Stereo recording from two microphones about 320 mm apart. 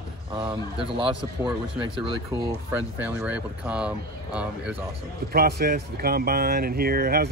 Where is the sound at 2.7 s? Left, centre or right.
Centre.